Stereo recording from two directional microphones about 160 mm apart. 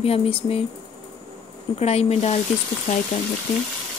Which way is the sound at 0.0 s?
40° left (ahead or behind).